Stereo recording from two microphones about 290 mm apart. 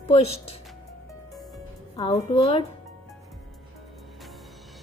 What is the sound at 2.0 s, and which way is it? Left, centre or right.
Speech, left.